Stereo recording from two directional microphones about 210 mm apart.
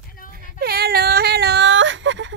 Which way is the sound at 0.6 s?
50° right (ahead or behind).